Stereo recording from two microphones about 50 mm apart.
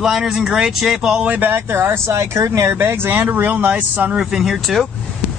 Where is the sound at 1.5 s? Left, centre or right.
Right.